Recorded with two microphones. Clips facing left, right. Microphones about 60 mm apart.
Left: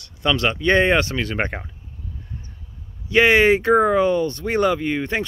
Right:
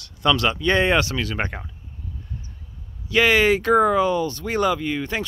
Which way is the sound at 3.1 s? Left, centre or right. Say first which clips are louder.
Left 3 dB; left.